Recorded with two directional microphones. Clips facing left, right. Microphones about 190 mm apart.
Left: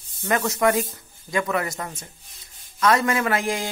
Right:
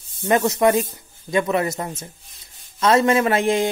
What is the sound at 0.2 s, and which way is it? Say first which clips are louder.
Speech: right 4 dB; 20° right (ahead or behind).